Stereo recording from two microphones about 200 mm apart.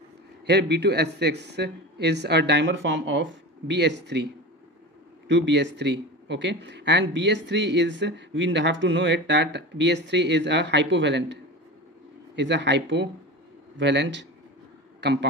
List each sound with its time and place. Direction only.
0.5 s speech: 55° right (ahead or behind)
5.3 s speech: 60° right (ahead or behind)
12.4 s a man's voice: 60° right (ahead or behind)